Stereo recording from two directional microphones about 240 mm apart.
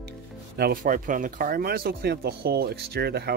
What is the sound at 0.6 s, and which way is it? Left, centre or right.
Speech, right.